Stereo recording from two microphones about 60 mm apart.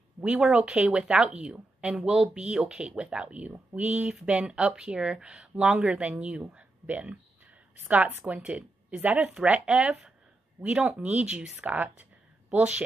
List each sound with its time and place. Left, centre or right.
0.2 s a woman's voice: centre